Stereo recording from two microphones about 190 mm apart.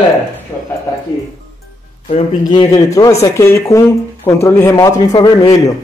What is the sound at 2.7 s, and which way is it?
A man's voice, 15° left (ahead or behind).